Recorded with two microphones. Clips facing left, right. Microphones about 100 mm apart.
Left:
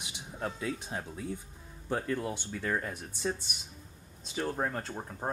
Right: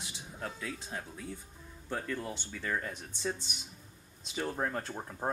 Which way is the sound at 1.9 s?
5° left (ahead or behind).